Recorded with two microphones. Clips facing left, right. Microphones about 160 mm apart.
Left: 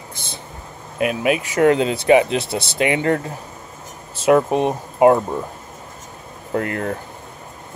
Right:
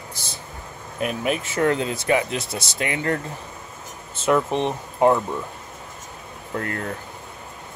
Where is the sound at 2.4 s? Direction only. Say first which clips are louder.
Left 6 dB; 65° left (ahead or behind).